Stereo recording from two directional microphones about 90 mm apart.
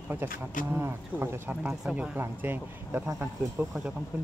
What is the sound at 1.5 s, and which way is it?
Speech, 10° right (ahead or behind).